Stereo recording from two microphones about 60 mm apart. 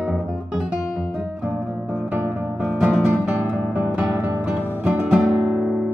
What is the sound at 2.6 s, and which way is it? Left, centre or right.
Music, centre.